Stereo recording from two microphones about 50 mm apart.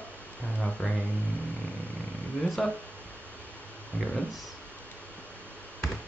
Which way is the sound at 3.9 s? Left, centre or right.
Left.